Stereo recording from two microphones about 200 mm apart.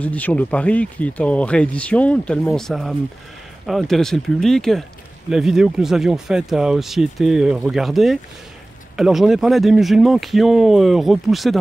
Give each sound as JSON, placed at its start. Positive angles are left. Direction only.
{"t": 0.0, "sound": "speech", "side_deg": 5}